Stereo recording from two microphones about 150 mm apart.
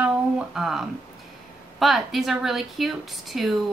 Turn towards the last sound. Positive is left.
turn(degrees=0)  # may be behind; listen again after turning